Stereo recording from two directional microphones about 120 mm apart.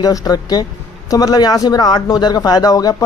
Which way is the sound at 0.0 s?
30° left (ahead or behind).